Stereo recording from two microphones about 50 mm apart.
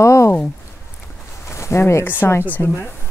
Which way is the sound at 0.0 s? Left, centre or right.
Left.